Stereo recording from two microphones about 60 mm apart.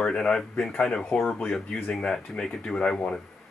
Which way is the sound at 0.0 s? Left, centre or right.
Centre.